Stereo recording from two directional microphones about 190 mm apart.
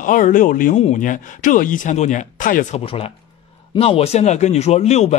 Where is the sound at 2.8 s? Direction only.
30° left (ahead or behind).